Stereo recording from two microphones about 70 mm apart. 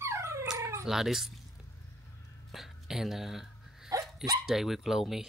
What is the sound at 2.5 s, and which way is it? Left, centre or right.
Hiccup, centre.